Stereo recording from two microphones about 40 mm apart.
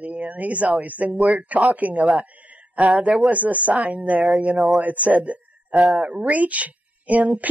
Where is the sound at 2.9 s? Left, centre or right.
Centre.